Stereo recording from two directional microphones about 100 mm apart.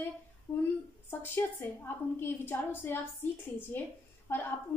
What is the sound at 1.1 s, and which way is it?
A woman's voice, 20° left (ahead or behind).